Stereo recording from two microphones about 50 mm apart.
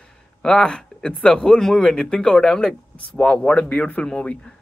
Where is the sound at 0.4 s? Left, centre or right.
Centre.